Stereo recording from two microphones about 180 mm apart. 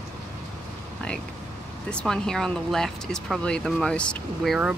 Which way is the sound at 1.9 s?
5° left (ahead or behind).